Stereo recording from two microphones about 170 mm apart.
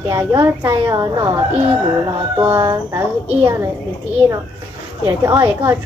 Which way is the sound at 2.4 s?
15° right (ahead or behind).